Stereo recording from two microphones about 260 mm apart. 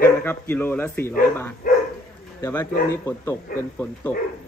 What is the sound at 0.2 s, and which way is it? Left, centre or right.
Speech, centre.